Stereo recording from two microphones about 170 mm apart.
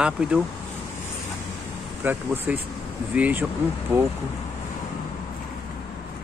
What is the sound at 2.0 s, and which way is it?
Speech, 10° right (ahead or behind).